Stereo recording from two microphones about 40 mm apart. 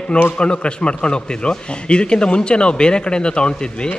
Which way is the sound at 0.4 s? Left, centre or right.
Left.